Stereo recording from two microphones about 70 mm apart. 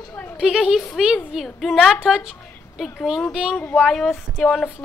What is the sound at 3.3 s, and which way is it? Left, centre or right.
Speech, centre.